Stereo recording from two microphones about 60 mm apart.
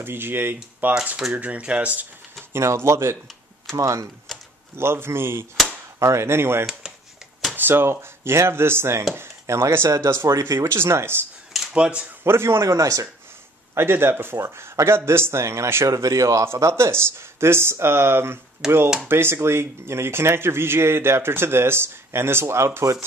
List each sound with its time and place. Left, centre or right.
0.0 s speech: right
2.5 s speech: right
3.7 s speech: right
4.7 s speech: right
10.2 s speech: right
11.7 s speech: centre
12.2 s a man's voice: right
12.6 s speech: right
13.7 s speech: right
18.6 s speech: centre
19.0 s speech: right